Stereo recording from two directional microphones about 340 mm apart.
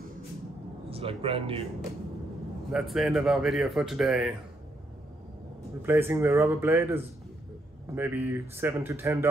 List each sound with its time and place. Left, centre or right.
0.8 s a man's voice: centre
2.7 s speech: centre
5.8 s speech: centre